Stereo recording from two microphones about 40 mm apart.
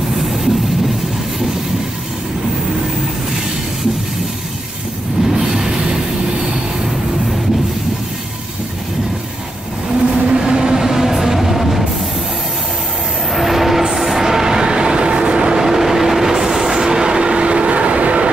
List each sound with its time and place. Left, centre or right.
5.3 s train: centre
10.1 s train: right; by 11.8 s centre
13.3 s vehicle: centre; by 18.3 s right